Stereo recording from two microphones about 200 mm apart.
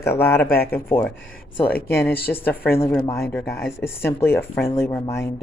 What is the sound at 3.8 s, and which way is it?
Speech, 10° left (ahead or behind).